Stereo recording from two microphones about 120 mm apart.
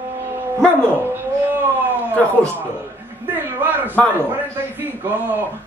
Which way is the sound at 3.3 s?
15° right (ahead or behind).